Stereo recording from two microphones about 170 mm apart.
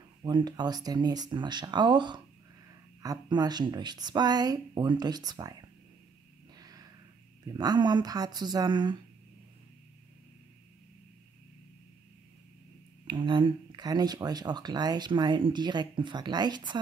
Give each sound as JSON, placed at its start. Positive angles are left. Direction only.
{"t": 0.2, "sound": "speech", "side_deg": -25}
{"t": 6.6, "sound": "a sound", "side_deg": -20}
{"t": 7.4, "sound": "speech", "side_deg": -25}
{"t": 13.0, "sound": "speech", "side_deg": -30}